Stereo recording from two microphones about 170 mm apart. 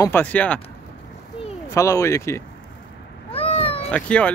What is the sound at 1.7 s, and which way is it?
Speech, 20° left (ahead or behind).